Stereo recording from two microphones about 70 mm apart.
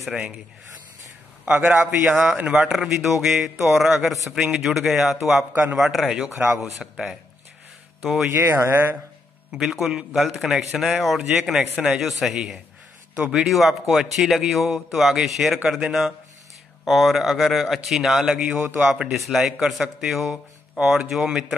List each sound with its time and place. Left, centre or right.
0.1 s a man's voice: centre
1.6 s a man's voice: centre
2.7 s a man's voice: centre
5.5 s a man's voice: right
5.8 s a man's voice: centre
8.3 s speech: right
9.5 s a man's voice: centre